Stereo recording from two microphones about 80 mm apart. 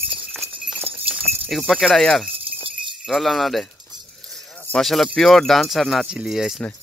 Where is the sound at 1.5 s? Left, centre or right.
Centre.